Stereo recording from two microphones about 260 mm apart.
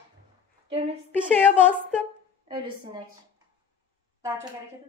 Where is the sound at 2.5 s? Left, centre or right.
Centre.